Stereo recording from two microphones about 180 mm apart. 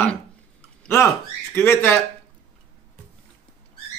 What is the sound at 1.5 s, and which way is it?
Speech, 15° left (ahead or behind).